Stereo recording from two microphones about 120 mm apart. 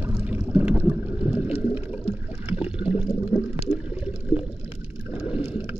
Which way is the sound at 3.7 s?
10° right (ahead or behind).